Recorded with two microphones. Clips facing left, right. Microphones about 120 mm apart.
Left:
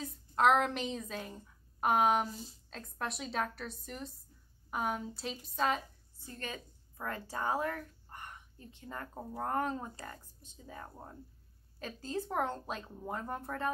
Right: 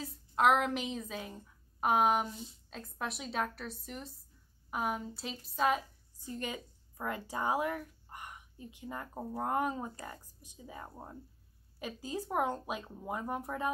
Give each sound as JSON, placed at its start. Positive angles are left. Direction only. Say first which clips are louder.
{"t": 0.0, "sound": "a woman's voice", "louder": "even", "side_deg": -5}
{"t": 2.2, "sound": "speech", "louder": "even", "side_deg": 40}
{"t": 2.7, "sound": "a woman's voice", "louder": "even", "side_deg": 0}
{"t": 6.2, "sound": "a woman's voice", "louder": "right 4 dB", "side_deg": -15}